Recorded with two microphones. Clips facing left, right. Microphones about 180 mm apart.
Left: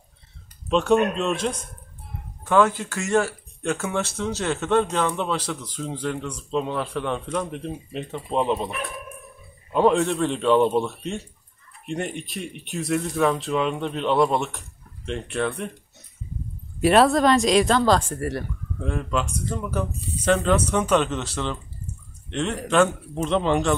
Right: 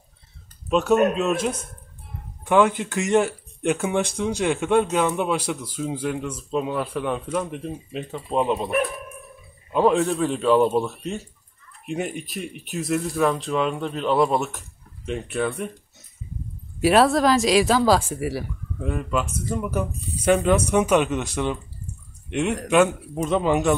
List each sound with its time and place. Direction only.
0.7 s speech: 5° right (ahead or behind)
2.4 s speech: 15° right (ahead or behind)
9.7 s speech: centre (ahead or behind)
16.8 s speech: centre (ahead or behind)